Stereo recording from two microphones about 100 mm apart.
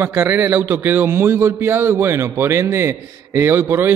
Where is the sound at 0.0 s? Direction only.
20° right (ahead or behind).